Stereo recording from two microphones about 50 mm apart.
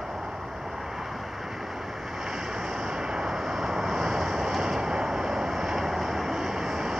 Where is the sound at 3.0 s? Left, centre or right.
Centre.